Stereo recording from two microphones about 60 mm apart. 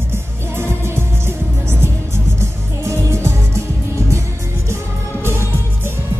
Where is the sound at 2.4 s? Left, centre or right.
Right.